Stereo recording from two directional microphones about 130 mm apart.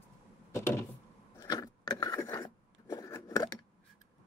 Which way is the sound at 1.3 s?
25° left (ahead or behind).